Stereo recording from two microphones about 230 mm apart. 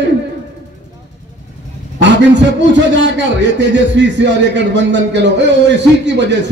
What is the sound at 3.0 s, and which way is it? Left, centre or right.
A man's voice, right.